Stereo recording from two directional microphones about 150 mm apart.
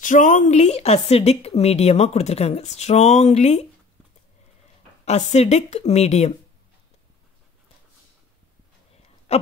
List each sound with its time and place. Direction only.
0.0 s a woman's voice: 60° left (ahead or behind)
5.0 s a woman's voice: 45° left (ahead or behind)
9.3 s a sound: 45° left (ahead or behind)